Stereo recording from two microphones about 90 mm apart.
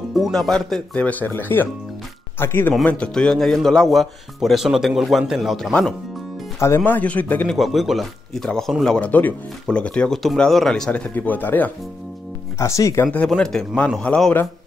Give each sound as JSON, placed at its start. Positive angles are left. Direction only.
{"t": 0.1, "sound": "speech", "side_deg": 0}
{"t": 1.0, "sound": "speech", "side_deg": 20}
{"t": 2.8, "sound": "a man's voice", "side_deg": 15}
{"t": 7.4, "sound": "speech", "side_deg": 0}
{"t": 11.1, "sound": "speech", "side_deg": 20}
{"t": 12.5, "sound": "speech", "side_deg": 35}
{"t": 13.0, "sound": "a man's voice", "side_deg": 20}
{"t": 13.3, "sound": "a man's voice", "side_deg": 5}